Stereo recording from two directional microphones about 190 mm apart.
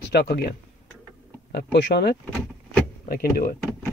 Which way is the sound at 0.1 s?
60° left (ahead or behind).